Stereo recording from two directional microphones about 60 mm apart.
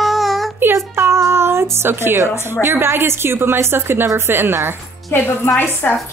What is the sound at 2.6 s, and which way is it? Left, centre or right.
A woman's voice, right.